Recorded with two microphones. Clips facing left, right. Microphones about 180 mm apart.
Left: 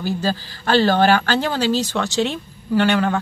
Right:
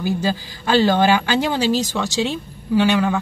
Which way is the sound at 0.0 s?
15° right (ahead or behind).